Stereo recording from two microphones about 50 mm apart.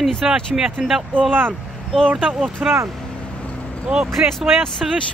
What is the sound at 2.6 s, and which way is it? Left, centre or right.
Speech, centre.